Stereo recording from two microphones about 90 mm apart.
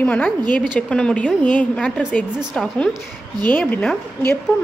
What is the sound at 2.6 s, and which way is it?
Speech, centre (ahead or behind).